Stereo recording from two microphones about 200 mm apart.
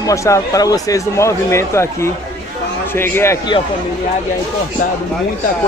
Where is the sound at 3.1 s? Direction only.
15° left (ahead or behind).